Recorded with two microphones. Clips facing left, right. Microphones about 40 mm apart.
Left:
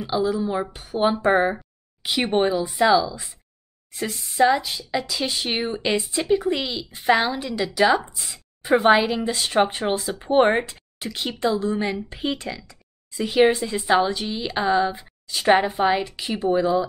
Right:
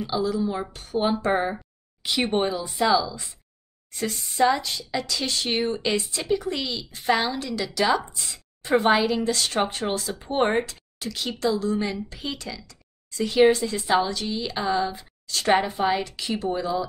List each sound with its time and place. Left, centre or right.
0.1 s speech: centre